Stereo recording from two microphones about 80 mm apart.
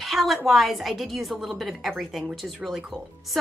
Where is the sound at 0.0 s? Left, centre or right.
Centre.